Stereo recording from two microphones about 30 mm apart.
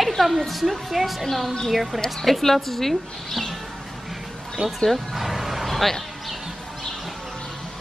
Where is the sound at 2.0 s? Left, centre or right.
Centre.